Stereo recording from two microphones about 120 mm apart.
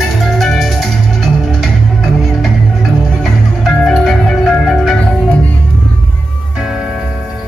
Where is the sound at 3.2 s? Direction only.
5° left (ahead or behind).